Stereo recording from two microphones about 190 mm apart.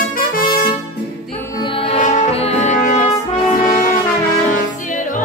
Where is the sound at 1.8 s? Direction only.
30° left (ahead or behind).